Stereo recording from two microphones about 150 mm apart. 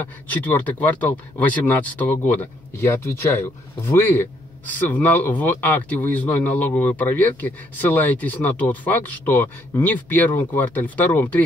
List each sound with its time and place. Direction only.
0.0 s speech: 10° left (ahead or behind)